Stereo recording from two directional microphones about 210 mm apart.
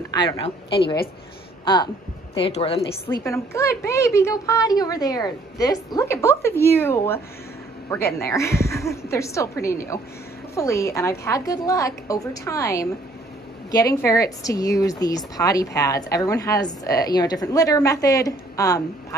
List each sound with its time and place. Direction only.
0.1 s a woman's voice: 20° left (ahead or behind)
3.3 s speech: 15° left (ahead or behind)